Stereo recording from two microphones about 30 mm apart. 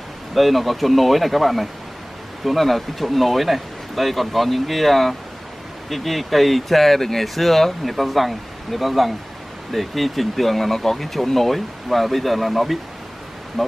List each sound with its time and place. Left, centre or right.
0.3 s speech: centre